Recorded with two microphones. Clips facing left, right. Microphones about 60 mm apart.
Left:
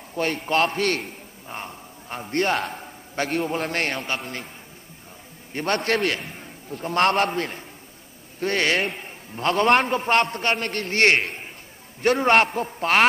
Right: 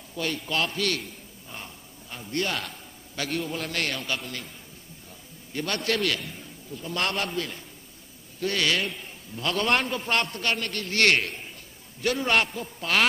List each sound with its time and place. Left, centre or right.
0.1 s a man's voice: left
5.5 s a man's voice: left